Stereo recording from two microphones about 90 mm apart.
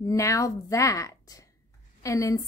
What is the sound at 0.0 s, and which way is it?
A woman's voice, 35° left (ahead or behind).